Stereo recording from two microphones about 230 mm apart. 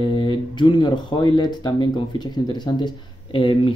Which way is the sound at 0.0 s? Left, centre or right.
Left.